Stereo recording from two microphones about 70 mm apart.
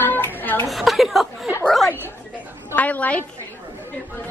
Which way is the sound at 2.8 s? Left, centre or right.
Left.